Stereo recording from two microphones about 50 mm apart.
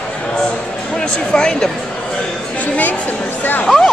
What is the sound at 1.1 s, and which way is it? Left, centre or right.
Speech, centre.